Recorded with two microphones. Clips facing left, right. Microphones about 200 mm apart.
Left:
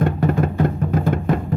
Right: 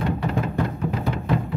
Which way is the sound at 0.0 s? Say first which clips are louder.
Left 6 dB; 50° left (ahead or behind).